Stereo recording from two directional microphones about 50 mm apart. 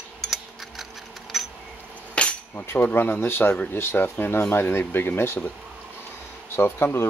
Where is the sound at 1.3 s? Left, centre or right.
Centre.